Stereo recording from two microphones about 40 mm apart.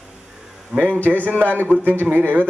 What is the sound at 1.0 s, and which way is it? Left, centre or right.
A man's voice, right.